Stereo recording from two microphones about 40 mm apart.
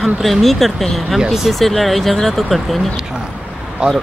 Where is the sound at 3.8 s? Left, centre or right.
Right.